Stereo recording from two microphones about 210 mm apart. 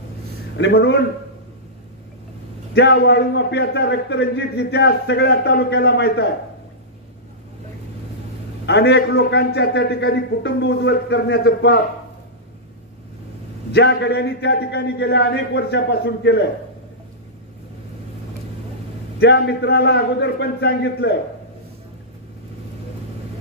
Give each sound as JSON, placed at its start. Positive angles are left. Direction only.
{"t": 0.6, "sound": "a man's voice", "side_deg": 55}
{"t": 2.7, "sound": "a man's voice", "side_deg": 55}
{"t": 8.6, "sound": "a man's voice", "side_deg": 50}
{"t": 13.7, "sound": "a man's voice", "side_deg": 55}
{"t": 19.1, "sound": "a man's voice", "side_deg": 50}